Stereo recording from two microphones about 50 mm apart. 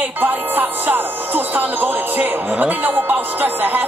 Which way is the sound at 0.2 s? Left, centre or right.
Right.